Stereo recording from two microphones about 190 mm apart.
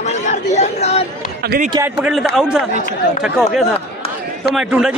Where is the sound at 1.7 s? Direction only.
10° right (ahead or behind).